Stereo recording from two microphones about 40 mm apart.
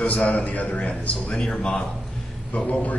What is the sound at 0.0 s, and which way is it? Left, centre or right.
A man's voice, left.